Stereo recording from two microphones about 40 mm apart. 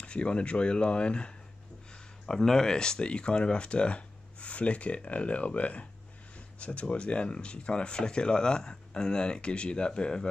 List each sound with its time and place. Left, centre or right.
0.0 s speech: left
2.2 s speech: centre